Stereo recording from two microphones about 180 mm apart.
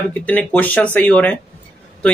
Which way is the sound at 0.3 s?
10° left (ahead or behind).